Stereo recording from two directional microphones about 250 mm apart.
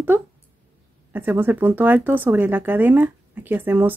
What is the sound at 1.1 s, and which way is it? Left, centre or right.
Speech, centre.